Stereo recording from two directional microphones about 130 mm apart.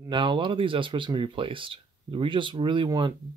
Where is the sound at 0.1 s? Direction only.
35° right (ahead or behind).